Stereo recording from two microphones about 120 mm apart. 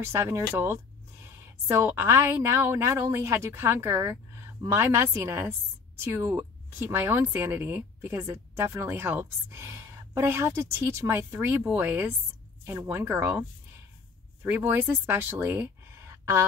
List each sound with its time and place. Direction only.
0.0 s speech: 20° right (ahead or behind)
14.5 s speech: 20° right (ahead or behind)